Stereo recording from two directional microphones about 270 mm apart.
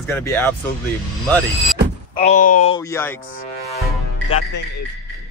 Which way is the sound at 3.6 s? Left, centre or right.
Left.